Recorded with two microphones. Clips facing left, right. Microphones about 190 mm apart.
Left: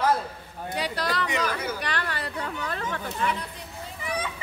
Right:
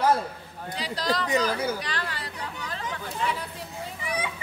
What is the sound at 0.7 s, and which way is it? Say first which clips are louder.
Speech: even; 60° left (ahead or behind).